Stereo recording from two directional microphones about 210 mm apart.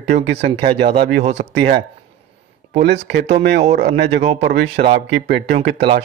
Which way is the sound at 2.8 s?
55° right (ahead or behind).